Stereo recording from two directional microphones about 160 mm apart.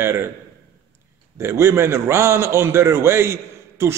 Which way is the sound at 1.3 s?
20° right (ahead or behind).